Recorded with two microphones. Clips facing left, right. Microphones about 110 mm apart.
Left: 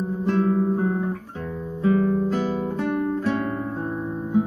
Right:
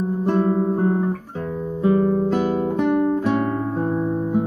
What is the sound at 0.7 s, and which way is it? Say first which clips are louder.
Guitar: right 3 dB; 10° right (ahead or behind).